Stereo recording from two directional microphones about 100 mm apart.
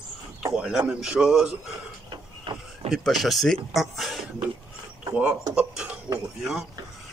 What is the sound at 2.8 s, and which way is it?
Speech, centre (ahead or behind).